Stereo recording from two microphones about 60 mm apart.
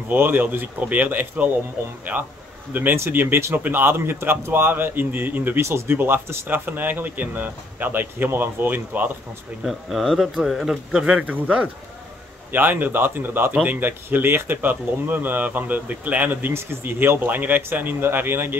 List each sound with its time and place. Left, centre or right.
0.1 s speech: right
5.6 s speech: right
9.6 s speech: centre; by 16.5 s right
16.5 s speech: right